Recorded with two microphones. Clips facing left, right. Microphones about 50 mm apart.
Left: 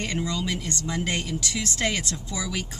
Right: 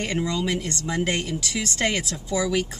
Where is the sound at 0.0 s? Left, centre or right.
Centre.